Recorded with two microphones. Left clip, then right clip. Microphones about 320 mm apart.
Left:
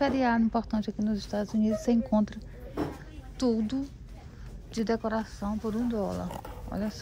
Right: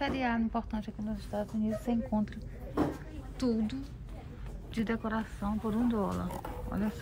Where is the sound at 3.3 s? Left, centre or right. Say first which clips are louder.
Left 5 dB; centre.